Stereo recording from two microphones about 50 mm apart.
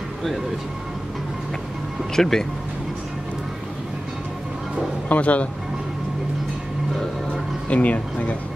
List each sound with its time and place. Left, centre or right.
2.1 s speech: centre
5.1 s speech: left
7.7 s speech: left